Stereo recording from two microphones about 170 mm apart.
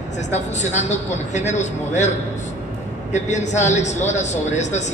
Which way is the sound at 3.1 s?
45° left (ahead or behind).